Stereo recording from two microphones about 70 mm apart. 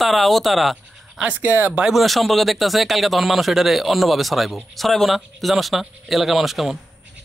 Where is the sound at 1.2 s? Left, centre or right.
Right.